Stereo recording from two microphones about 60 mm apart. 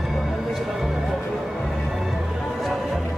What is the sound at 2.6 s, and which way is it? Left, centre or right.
Music, centre.